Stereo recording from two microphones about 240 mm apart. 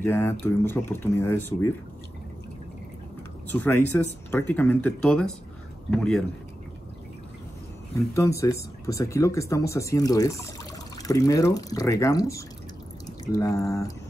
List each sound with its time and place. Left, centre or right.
0.0 s speech: centre
3.4 s speech: centre
8.1 s speech: centre